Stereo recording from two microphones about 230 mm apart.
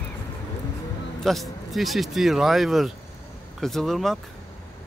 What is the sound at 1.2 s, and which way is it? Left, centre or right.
Speech, centre.